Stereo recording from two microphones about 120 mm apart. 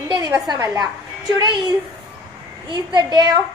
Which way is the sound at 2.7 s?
40° right (ahead or behind).